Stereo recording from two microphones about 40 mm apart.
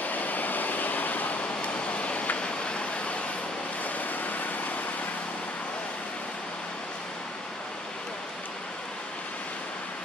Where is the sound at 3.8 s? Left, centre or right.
Left.